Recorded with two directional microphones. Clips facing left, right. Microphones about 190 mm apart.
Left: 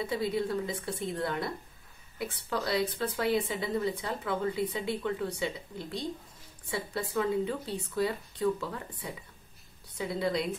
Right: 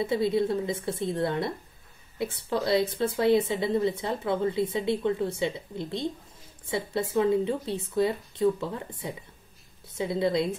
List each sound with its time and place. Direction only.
0.0 s speech: 25° right (ahead or behind)